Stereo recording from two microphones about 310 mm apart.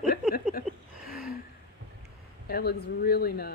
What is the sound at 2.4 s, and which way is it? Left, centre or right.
Speech, left.